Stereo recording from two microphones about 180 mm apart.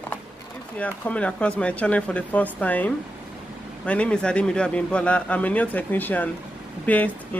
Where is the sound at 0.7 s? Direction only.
5° left (ahead or behind).